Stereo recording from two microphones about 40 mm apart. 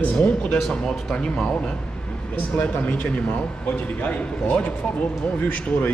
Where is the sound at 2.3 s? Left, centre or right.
Left.